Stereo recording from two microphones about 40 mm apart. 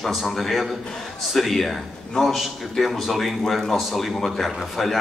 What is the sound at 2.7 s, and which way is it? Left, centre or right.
Speech, centre.